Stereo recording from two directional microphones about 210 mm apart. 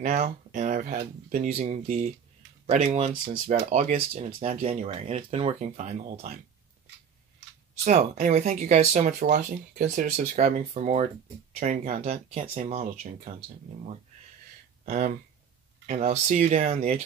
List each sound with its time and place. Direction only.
0.0 s speech: 35° right (ahead or behind)
7.8 s speech: 35° right (ahead or behind)
14.9 s speech: 35° right (ahead or behind)